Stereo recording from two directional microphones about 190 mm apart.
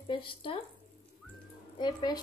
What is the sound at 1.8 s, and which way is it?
Speech, 20° left (ahead or behind).